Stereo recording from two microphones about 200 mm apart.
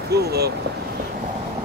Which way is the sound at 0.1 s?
55° right (ahead or behind).